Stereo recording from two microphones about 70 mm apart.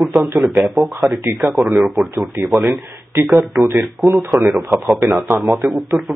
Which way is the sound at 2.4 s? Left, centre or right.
Right.